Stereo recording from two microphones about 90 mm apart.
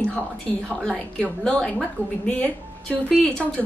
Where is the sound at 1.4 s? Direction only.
10° left (ahead or behind).